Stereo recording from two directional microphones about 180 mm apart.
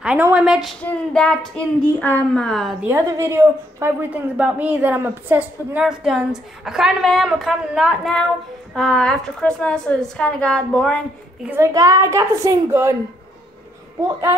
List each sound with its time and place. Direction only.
0.0 s a woman's voice: 5° right (ahead or behind)
2.9 s a woman's voice: 15° right (ahead or behind); by 11.0 s 5° left (ahead or behind)
11.4 s a child's voice: 15° right (ahead or behind)